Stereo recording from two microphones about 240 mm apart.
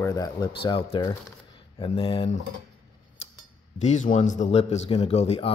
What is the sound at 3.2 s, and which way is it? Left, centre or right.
Cutlery, left.